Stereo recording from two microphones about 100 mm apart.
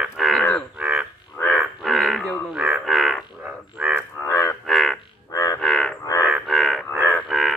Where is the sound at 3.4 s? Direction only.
10° right (ahead or behind).